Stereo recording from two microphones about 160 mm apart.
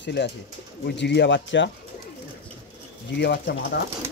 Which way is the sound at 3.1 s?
90° left.